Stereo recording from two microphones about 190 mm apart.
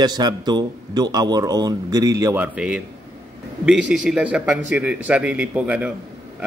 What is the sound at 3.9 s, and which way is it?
A man's voice, 5° right (ahead or behind).